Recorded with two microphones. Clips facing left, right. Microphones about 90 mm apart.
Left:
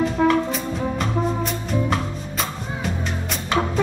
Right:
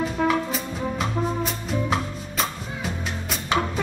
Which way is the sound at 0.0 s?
Centre (ahead or behind).